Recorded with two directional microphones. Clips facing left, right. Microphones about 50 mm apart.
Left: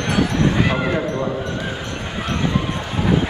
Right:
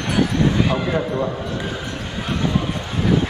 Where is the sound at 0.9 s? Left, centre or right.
Centre.